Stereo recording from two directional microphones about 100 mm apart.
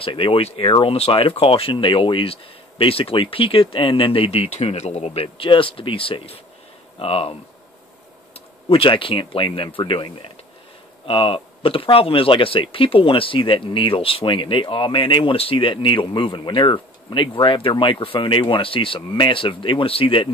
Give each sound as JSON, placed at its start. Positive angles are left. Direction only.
{"t": 0.0, "sound": "speech", "side_deg": 65}
{"t": 8.6, "sound": "speech", "side_deg": 65}